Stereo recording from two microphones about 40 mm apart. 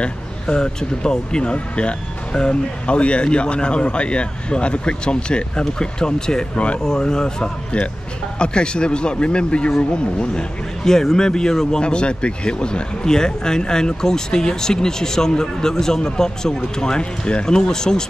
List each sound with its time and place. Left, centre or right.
0.0 s speech: centre